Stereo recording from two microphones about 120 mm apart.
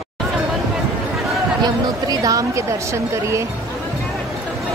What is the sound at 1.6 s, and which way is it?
Speech, 30° right (ahead or behind).